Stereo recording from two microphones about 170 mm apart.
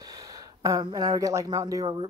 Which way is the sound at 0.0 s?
20° right (ahead or behind).